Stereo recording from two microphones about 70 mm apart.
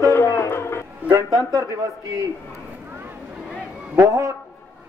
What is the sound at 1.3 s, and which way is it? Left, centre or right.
Speech, right.